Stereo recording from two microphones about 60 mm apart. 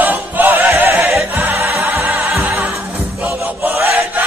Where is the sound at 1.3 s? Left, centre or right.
Right.